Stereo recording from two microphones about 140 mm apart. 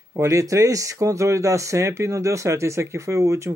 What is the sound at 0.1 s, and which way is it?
Speech, 20° right (ahead or behind).